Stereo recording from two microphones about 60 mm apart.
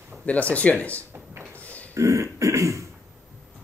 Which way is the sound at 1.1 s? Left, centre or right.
Right.